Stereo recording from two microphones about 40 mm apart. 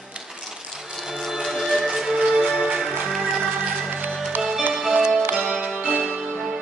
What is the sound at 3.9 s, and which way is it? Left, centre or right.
Music, right.